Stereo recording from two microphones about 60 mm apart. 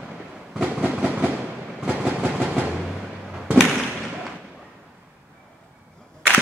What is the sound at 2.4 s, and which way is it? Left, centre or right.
Music, right.